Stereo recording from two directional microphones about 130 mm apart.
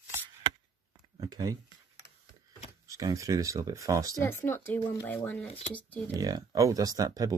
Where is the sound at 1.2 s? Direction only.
30° right (ahead or behind).